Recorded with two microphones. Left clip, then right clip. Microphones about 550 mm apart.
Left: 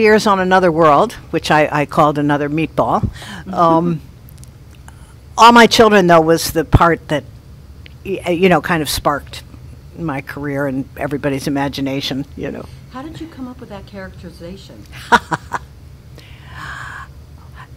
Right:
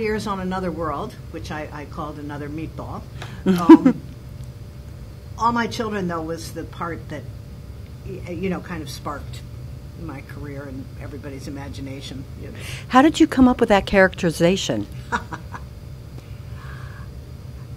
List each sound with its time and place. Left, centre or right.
0.0 s speech: left
3.4 s speech: right
5.3 s speech: left
12.9 s speech: right
15.0 s speech: left
16.5 s a sound: left